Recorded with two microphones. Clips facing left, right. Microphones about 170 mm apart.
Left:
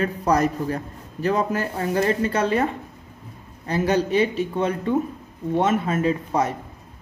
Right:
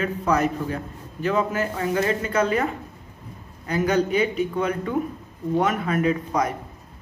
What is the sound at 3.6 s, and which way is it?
Speech, 30° left (ahead or behind).